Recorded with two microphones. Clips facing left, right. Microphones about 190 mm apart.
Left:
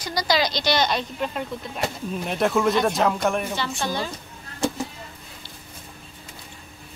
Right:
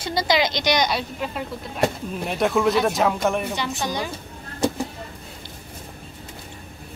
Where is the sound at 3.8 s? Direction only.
15° right (ahead or behind).